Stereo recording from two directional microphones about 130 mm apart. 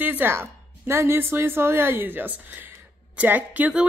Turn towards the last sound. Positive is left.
turn(degrees=-10)  # may be behind; listen again after turning